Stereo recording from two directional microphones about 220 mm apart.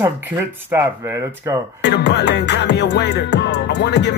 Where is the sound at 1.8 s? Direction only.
50° left (ahead or behind).